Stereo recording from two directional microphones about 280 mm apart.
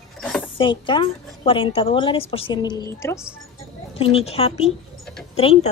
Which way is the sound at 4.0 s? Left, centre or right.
Left.